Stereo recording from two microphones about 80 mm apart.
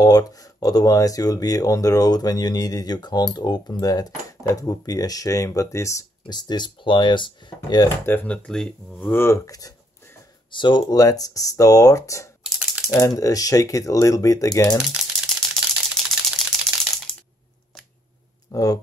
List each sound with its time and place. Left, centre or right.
0.0 s speech: left
6.2 s speech: left
8.0 s speech: left
9.5 s speech: left
10.5 s speech: left
11.0 s speech: left
15.5 s camera: centre
18.5 s speech: left